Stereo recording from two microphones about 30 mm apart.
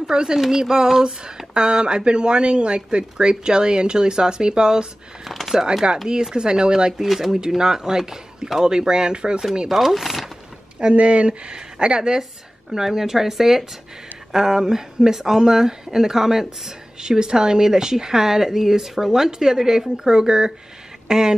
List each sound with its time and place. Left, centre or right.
0.0 s speech: right
5.2 s speech: centre
6.3 s speech: right
7.0 s speech: centre
7.3 s speech: right
9.7 s speech: centre
10.8 s a woman's voice: right
12.7 s speech: centre